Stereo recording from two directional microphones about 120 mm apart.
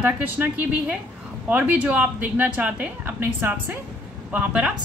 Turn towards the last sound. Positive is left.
turn(degrees=-10)  # may be behind; listen again after turning